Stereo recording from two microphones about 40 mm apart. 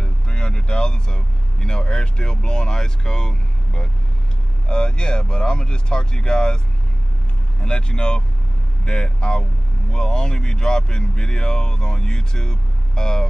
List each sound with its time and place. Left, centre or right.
0.0 s speech: centre
7.6 s speech: left